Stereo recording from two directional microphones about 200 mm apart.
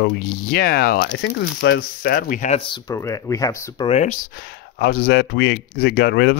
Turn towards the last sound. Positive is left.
turn(degrees=55)  # may be behind; listen again after turning